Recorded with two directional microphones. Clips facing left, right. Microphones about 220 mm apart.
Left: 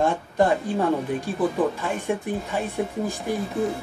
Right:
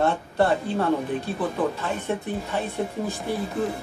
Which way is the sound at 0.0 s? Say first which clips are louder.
Left 1 dB; 15° left (ahead or behind).